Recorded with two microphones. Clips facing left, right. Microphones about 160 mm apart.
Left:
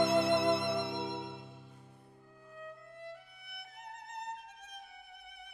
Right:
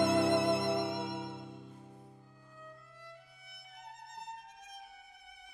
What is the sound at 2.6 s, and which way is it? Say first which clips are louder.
Music: left 7 dB; 60° left (ahead or behind).